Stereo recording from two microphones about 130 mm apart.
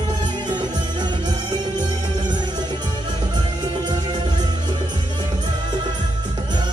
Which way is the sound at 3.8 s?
35° right (ahead or behind).